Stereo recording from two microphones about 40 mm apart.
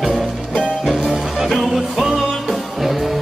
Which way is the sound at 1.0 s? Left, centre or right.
Centre.